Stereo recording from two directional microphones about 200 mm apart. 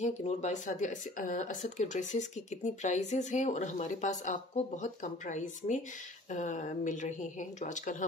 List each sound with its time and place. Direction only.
0.0 s speech: 35° left (ahead or behind)